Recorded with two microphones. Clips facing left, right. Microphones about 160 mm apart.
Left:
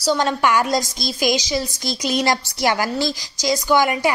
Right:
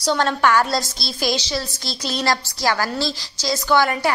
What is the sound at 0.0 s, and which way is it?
A woman's voice, 10° left (ahead or behind).